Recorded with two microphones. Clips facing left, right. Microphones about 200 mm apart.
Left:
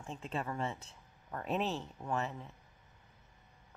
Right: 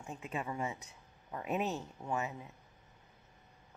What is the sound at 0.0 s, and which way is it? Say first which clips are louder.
Speech: left 1 dB; 10° right (ahead or behind).